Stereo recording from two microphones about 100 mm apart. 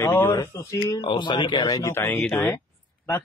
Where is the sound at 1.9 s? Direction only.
20° left (ahead or behind).